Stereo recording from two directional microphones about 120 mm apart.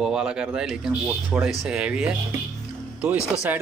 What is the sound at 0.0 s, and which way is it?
Speech, 5° right (ahead or behind).